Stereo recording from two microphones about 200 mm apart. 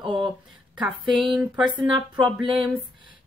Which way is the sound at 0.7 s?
Centre (ahead or behind).